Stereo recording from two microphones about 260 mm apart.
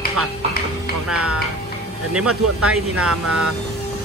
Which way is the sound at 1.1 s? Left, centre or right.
Right.